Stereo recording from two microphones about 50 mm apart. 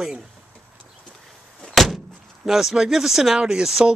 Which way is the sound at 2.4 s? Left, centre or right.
Centre.